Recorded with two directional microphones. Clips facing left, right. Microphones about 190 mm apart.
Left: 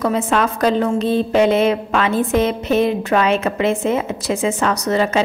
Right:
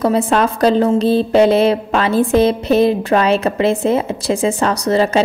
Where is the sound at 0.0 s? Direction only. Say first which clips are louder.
Right 3 dB; 35° right (ahead or behind).